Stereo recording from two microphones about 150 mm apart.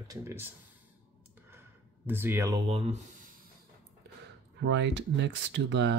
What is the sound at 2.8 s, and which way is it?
Speech, 55° right (ahead or behind).